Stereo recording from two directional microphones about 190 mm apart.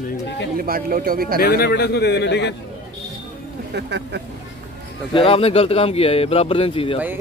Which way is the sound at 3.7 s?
60° right (ahead or behind).